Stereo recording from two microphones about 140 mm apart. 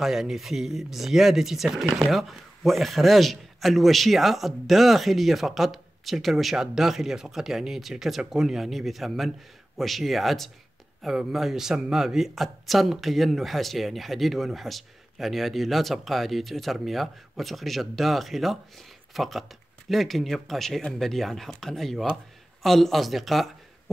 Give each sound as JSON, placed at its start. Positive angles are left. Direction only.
{"t": 0.0, "sound": "speech", "side_deg": 0}